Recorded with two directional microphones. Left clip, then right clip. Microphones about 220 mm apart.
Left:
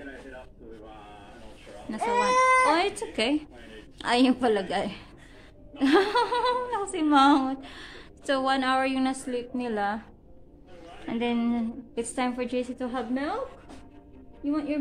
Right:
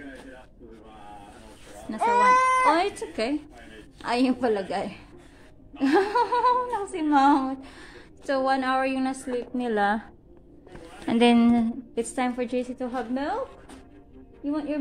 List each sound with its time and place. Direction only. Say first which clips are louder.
1.9 s baby cry: right 5 dB; 10° right (ahead or behind)
4.0 s a woman's voice: left 1 dB; 10° left (ahead or behind)
9.6 s a woman's voice: right 6 dB; 15° right (ahead or behind)
11.1 s speech: right 9 dB; 30° right (ahead or behind)
11.9 s a woman's voice: even; 5° right (ahead or behind)
14.4 s a woman's voice: even; 5° left (ahead or behind)